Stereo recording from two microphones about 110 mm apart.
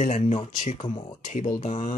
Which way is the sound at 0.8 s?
45° left (ahead or behind).